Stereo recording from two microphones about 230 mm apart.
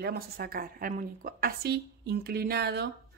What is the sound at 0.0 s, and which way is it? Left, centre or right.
A woman's voice, right.